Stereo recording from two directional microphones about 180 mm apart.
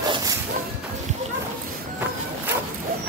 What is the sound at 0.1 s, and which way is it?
Dog, 20° right (ahead or behind).